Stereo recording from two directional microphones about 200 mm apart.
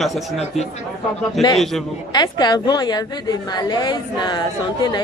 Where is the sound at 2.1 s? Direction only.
20° left (ahead or behind).